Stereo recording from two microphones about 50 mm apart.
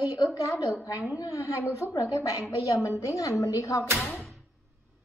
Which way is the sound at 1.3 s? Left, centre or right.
Left.